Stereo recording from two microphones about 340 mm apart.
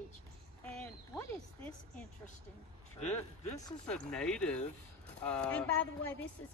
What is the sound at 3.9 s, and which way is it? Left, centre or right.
Speech, centre.